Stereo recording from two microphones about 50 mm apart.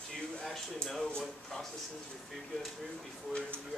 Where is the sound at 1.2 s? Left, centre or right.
Centre.